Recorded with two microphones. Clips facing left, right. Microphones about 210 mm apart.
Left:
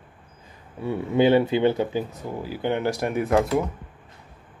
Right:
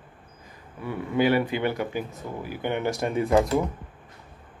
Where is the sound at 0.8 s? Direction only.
25° left (ahead or behind).